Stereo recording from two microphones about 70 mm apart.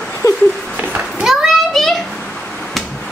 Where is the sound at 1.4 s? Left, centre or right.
Centre.